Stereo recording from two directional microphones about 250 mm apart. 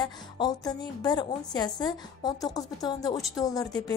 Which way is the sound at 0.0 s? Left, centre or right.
Centre.